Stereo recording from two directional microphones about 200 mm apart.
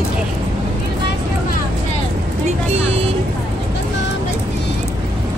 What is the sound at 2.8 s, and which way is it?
Vehicle, 30° right (ahead or behind).